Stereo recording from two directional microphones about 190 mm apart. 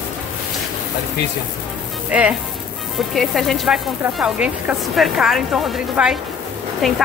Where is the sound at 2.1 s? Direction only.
5° right (ahead or behind).